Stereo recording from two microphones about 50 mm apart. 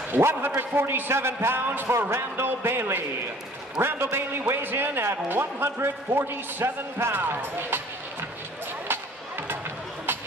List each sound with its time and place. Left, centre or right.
0.1 s a man's voice: right